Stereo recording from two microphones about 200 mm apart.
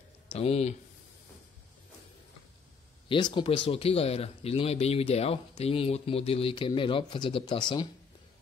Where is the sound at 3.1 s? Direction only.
25° left (ahead or behind).